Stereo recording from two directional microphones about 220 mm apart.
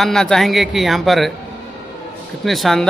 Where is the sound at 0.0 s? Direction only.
Centre (ahead or behind).